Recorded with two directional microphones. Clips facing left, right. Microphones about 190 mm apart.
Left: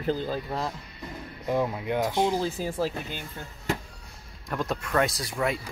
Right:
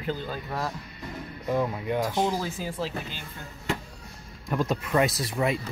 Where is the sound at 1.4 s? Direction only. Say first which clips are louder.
Even; 15° left (ahead or behind).